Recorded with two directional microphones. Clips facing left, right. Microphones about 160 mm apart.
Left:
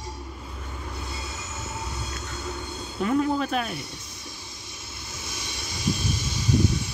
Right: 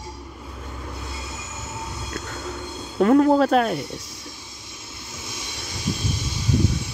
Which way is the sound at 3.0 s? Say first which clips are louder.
Right 8 dB; 55° right (ahead or behind).